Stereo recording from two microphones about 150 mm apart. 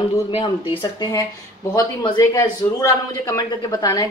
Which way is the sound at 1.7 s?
25° left (ahead or behind).